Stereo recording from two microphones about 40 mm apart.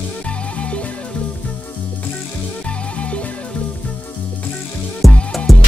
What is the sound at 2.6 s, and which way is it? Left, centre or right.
Music, left.